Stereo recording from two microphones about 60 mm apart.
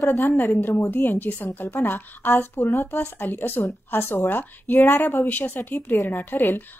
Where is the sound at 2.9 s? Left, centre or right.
Left.